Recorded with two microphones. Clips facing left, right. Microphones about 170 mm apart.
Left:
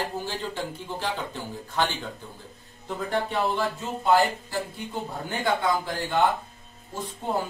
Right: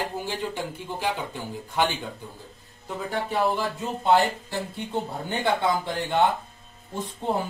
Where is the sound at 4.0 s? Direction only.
25° right (ahead or behind).